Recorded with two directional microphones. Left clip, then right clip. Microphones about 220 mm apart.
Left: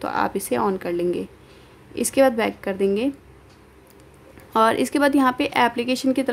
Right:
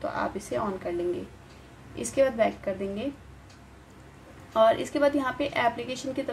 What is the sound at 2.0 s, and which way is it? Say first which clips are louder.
Speech: left 5 dB; 45° left (ahead or behind).